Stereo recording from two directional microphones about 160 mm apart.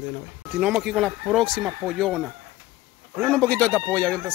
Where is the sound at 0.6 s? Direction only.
5° right (ahead or behind).